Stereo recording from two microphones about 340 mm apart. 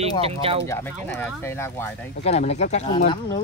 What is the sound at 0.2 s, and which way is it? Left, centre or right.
Speech, centre.